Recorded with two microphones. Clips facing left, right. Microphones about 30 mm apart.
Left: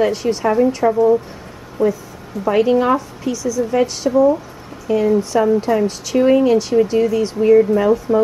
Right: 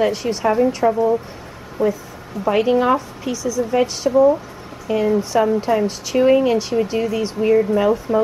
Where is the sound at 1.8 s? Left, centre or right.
Right.